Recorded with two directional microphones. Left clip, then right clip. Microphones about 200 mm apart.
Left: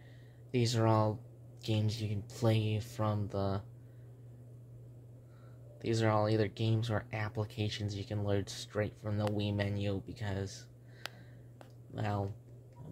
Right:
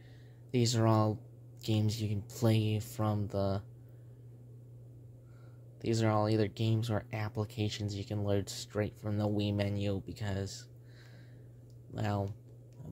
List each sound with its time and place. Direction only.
0.5 s speech: 25° right (ahead or behind)
5.8 s speech: 20° right (ahead or behind)
11.9 s speech: 25° right (ahead or behind)